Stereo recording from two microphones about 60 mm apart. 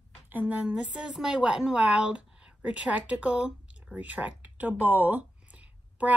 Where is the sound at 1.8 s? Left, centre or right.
Right.